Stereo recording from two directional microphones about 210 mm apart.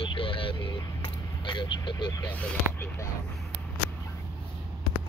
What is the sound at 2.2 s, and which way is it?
Speech, 10° left (ahead or behind).